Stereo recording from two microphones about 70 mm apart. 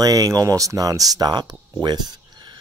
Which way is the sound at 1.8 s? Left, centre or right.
Right.